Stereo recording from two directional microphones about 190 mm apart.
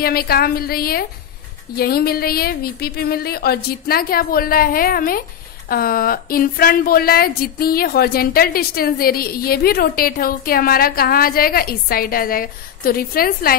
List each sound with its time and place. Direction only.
0.0 s speech: 55° left (ahead or behind)